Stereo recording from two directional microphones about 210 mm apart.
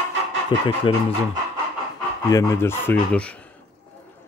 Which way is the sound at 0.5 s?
20° left (ahead or behind).